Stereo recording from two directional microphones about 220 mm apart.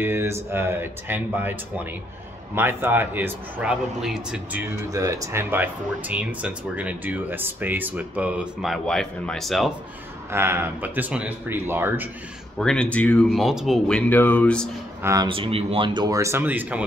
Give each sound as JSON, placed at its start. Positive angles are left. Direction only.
{"t": 0.0, "sound": "a man's voice", "side_deg": -10}
{"t": 10.3, "sound": "a man's voice", "side_deg": -10}
{"t": 12.5, "sound": "speech", "side_deg": 5}
{"t": 15.0, "sound": "a man's voice", "side_deg": -20}